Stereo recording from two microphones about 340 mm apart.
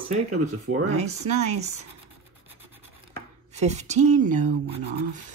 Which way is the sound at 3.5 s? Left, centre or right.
Centre.